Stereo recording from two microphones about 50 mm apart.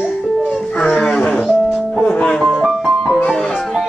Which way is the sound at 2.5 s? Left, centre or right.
Centre.